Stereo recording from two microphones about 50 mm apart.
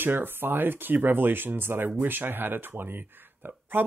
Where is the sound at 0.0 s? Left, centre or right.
Right.